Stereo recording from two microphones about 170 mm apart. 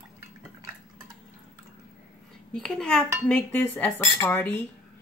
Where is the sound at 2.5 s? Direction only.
Centre (ahead or behind).